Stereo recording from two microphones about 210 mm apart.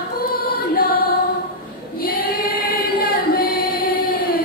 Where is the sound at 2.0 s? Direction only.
45° left (ahead or behind).